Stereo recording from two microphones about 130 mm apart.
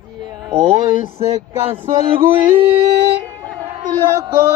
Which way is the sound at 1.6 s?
45° right (ahead or behind).